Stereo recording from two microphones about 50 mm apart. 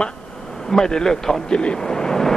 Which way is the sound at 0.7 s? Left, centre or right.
Centre.